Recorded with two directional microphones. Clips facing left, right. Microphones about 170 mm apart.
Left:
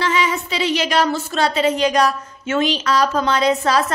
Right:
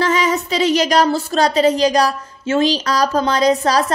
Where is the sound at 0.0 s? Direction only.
40° right (ahead or behind).